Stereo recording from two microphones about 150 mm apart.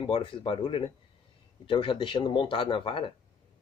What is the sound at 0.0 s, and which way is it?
Speech, 35° left (ahead or behind).